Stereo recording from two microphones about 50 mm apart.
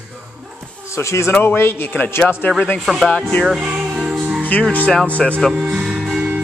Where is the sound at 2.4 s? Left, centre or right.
Left.